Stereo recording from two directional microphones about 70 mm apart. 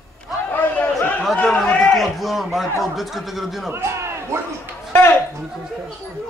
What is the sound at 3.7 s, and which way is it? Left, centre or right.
Speech, right.